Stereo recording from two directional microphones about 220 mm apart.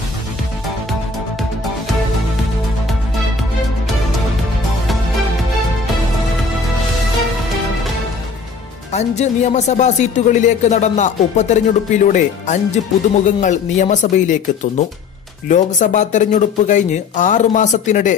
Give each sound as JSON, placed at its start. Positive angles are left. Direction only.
{"t": 8.9, "sound": "speech", "side_deg": 30}